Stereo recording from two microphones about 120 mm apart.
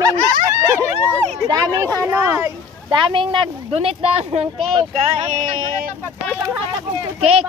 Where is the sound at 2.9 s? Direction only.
45° right (ahead or behind).